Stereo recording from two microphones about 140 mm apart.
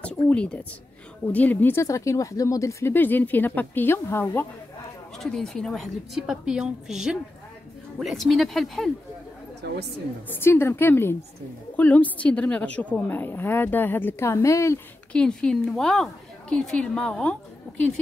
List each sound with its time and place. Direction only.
0.0 s speech: 10° left (ahead or behind)
5.1 s a woman's voice: 5° left (ahead or behind)
10.2 s speech: 15° left (ahead or behind)
15.1 s a woman's voice: 5° left (ahead or behind)